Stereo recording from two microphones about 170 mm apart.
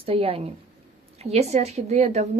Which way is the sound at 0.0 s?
35° right (ahead or behind).